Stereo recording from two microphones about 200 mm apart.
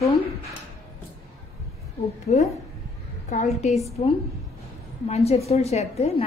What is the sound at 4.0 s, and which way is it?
A woman's voice, 35° left (ahead or behind).